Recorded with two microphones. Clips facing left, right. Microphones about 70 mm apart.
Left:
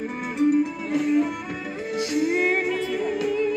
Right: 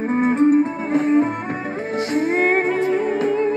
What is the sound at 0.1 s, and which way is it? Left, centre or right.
Music, right.